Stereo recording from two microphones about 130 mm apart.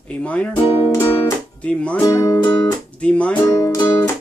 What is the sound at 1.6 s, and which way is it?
Speech, 10° left (ahead or behind).